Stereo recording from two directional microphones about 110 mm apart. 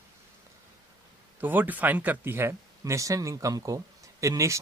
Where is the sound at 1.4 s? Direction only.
15° right (ahead or behind).